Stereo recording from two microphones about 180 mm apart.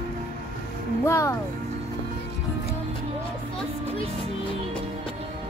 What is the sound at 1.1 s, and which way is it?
Music, 15° left (ahead or behind).